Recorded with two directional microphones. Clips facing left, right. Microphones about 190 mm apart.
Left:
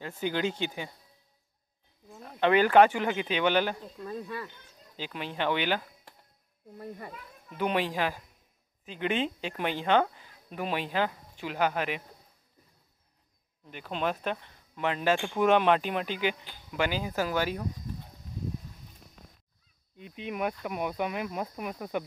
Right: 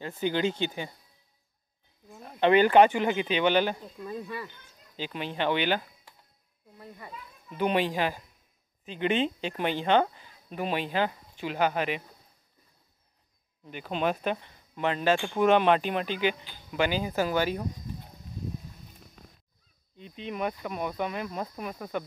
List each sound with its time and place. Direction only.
0.0 s speech: 5° left (ahead or behind)
2.0 s speech: centre (ahead or behind)
2.9 s speech: 15° right (ahead or behind)
4.9 s speech: 5° left (ahead or behind)
6.8 s speech: 50° left (ahead or behind)
7.5 s speech: centre (ahead or behind)
13.7 s speech: 5° right (ahead or behind)
20.0 s speech: 10° left (ahead or behind)